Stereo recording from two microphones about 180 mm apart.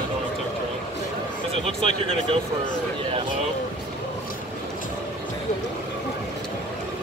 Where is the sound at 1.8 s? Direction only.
40° left (ahead or behind).